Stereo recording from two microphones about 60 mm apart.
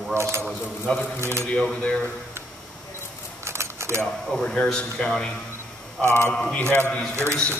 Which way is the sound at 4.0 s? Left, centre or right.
Centre.